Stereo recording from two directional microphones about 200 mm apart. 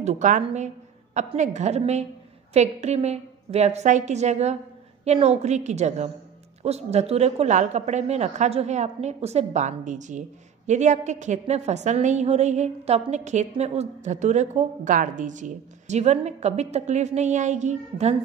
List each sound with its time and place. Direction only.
0.0 s a woman's voice: 35° right (ahead or behind)